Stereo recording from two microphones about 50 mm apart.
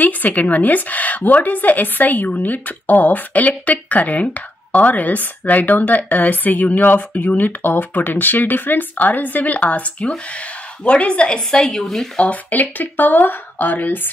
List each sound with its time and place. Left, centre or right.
0.0 s a woman's voice: left; by 12.1 s centre
12.2 s speech: left